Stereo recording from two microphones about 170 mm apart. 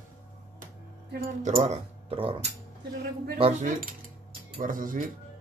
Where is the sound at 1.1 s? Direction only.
55° right (ahead or behind); by 2.3 s 35° right (ahead or behind).